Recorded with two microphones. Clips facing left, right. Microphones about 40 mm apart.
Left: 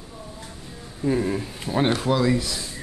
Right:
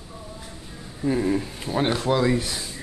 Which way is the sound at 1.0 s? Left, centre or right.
Centre.